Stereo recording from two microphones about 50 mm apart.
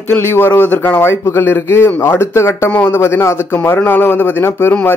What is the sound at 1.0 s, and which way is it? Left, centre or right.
Speech, left.